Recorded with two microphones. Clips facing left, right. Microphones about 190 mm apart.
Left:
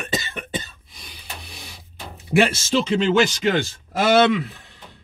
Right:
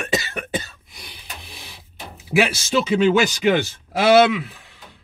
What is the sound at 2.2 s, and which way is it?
Speech, 5° right (ahead or behind).